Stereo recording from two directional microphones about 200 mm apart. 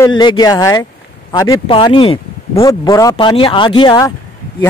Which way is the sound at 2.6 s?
15° left (ahead or behind).